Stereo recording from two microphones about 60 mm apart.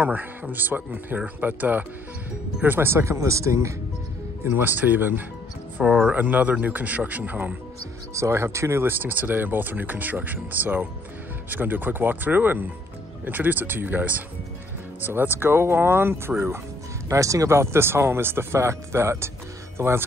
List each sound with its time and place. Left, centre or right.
0.0 s speech: right
2.9 s speech: right
4.6 s speech: right
5.9 s speech: centre
6.1 s speech: right
8.1 s speech: right
9.0 s speech: right
17.1 s speech: right